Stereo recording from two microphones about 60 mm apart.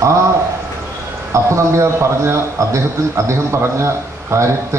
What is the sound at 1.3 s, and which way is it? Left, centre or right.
A man's voice, right.